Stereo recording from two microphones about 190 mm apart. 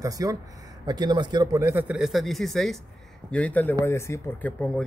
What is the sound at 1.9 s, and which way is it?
Speech, centre (ahead or behind).